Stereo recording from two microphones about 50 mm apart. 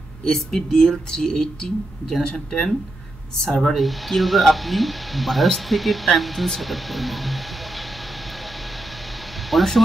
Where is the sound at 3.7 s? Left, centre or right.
Centre.